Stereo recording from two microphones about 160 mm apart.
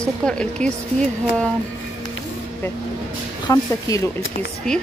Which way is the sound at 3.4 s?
20° left (ahead or behind).